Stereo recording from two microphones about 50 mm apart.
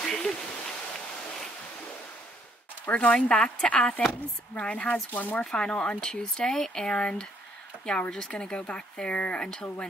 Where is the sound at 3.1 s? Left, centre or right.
Centre.